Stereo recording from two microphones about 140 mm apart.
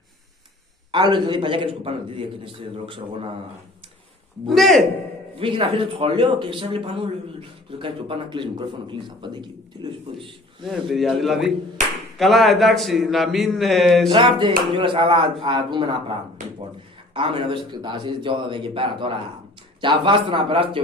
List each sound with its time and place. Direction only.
0.9 s speech: 35° right (ahead or behind)
4.5 s a man's voice: centre (ahead or behind)
5.4 s speech: 40° right (ahead or behind)
10.6 s a man's voice: centre (ahead or behind)
14.1 s speech: 35° right (ahead or behind)